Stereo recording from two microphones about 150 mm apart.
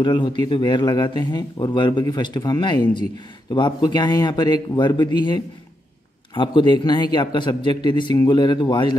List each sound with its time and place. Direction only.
0.0 s a man's voice: 30° left (ahead or behind)